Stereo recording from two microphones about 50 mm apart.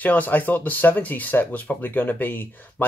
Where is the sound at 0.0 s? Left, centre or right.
Left.